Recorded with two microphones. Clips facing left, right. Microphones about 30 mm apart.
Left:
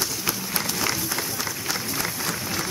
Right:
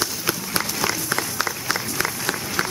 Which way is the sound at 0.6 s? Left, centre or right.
Centre.